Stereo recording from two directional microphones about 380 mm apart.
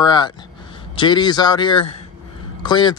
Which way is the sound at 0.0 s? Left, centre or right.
Centre.